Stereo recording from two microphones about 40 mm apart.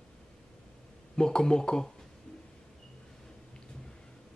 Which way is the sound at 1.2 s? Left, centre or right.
Centre.